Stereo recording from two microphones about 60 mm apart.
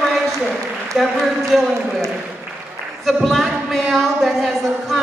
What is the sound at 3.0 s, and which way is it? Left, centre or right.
A woman's voice, centre.